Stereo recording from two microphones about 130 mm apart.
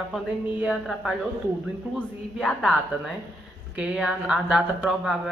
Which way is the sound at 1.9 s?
5° left (ahead or behind).